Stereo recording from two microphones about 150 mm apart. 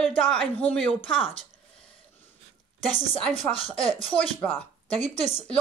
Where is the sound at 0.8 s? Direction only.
40° left (ahead or behind).